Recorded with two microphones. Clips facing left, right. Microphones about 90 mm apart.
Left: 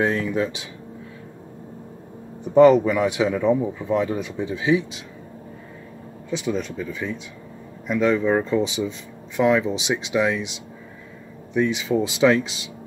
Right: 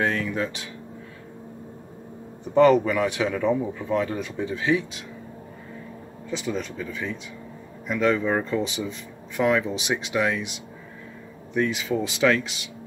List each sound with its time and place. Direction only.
0.0 s speech: 15° left (ahead or behind)
2.5 s speech: 15° left (ahead or behind)
6.3 s speech: 5° left (ahead or behind)
9.8 s speech: 20° left (ahead or behind)
11.5 s speech: 15° left (ahead or behind)